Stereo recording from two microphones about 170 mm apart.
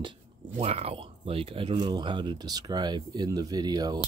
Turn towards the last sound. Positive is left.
turn(degrees=-25)  # may be behind; listen again after turning